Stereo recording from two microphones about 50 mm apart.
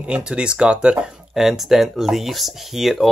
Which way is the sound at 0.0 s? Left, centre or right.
Right.